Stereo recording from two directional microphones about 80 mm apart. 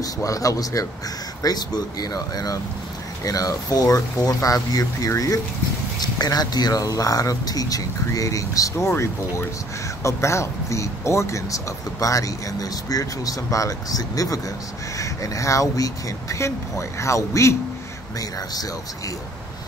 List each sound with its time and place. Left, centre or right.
0.0 s speech: left
18.5 s speech: left